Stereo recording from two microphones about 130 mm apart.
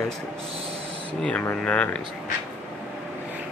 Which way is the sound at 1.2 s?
10° left (ahead or behind).